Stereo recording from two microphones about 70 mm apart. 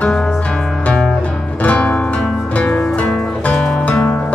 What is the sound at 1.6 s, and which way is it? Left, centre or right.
Music, left.